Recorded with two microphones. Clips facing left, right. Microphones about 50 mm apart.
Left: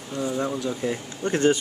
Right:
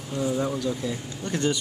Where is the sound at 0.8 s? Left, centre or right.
Left.